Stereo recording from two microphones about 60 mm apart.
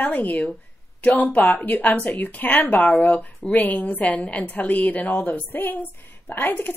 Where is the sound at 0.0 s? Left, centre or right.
Left.